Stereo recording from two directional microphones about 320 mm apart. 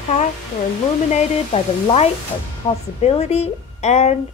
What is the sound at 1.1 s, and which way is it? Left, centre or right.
A woman's voice, centre.